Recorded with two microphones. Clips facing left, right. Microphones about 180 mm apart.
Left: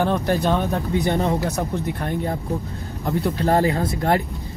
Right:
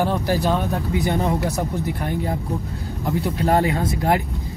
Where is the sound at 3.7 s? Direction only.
20° right (ahead or behind).